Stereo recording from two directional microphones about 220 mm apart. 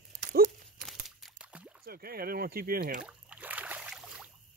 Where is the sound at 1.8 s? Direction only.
45° right (ahead or behind).